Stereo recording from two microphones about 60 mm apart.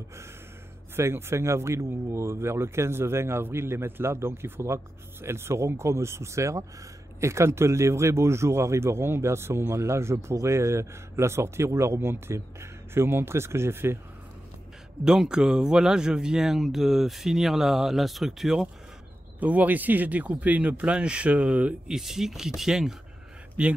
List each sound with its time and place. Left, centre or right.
0.9 s speech: right
15.0 s speech: centre
19.4 s speech: right
21.8 s speech: centre